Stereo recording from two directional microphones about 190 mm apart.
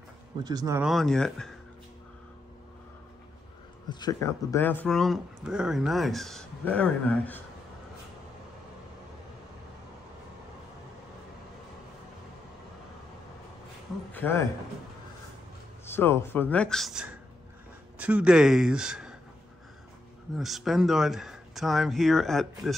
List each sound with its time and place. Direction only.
0.4 s speech: 20° right (ahead or behind)
0.7 s speech: centre (ahead or behind)
3.9 s speech: 20° left (ahead or behind)
14.1 s a man's voice: 10° left (ahead or behind)
15.8 s speech: 10° left (ahead or behind); by 19.1 s 5° right (ahead or behind)
20.3 s speech: centre (ahead or behind)